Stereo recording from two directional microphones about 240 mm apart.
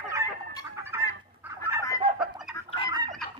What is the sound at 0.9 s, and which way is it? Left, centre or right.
Fowl, centre.